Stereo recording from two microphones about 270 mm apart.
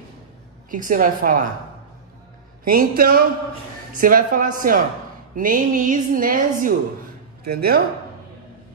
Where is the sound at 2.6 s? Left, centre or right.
Right.